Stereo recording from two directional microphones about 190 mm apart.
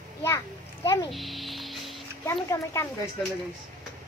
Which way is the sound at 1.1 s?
Centre (ahead or behind).